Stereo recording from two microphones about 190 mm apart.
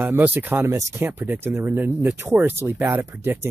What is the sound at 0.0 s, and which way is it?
Speech, 10° right (ahead or behind).